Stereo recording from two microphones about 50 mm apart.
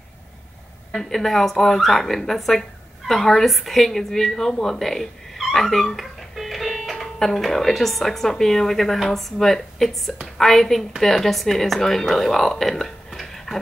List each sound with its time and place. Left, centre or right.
0.9 s a woman's voice: centre